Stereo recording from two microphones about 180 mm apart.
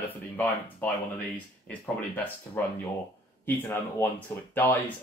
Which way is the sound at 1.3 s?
10° left (ahead or behind).